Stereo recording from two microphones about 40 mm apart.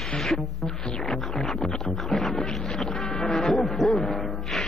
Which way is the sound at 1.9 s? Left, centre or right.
Centre.